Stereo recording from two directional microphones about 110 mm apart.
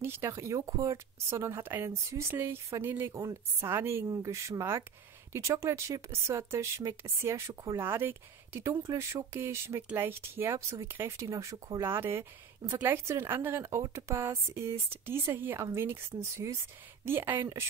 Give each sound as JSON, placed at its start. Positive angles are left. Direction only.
{"t": 0.0, "sound": "speech", "side_deg": -20}